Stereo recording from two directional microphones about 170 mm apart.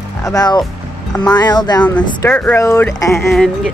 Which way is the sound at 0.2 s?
20° left (ahead or behind).